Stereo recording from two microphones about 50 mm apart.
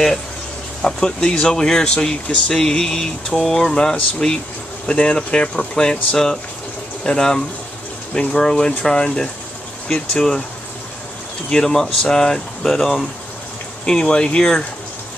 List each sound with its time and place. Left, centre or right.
0.8 s speech: centre
4.8 s speech: left
11.5 s speech: centre
13.8 s speech: centre